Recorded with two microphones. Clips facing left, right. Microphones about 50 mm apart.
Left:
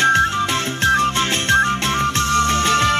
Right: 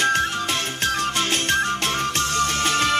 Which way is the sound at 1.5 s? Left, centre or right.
Left.